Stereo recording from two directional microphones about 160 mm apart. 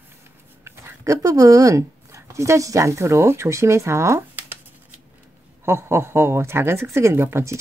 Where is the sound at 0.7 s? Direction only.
20° right (ahead or behind).